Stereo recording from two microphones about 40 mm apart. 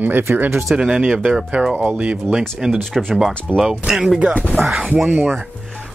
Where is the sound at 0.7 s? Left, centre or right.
Right.